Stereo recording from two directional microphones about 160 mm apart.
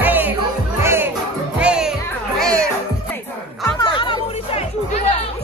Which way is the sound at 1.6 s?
5° right (ahead or behind).